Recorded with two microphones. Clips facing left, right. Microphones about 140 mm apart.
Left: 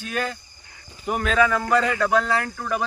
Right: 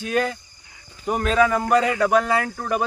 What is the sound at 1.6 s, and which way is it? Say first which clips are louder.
Speech: right 2 dB; 20° right (ahead or behind).